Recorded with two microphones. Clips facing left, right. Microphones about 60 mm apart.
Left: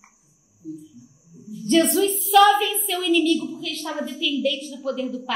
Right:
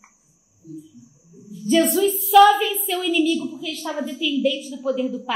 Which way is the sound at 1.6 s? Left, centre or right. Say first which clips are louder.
Right 1 dB; centre.